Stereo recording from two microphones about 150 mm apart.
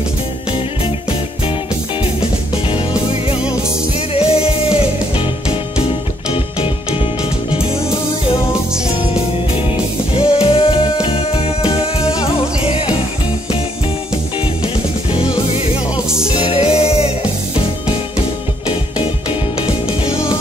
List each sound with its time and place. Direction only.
4.1 s music: 40° left (ahead or behind)
10.1 s music: 40° left (ahead or behind)
15.1 s music: 40° left (ahead or behind)
19.6 s music: 40° left (ahead or behind)